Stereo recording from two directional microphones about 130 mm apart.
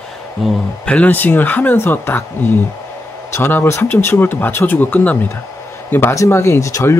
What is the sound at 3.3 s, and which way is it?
Speech, 20° left (ahead or behind).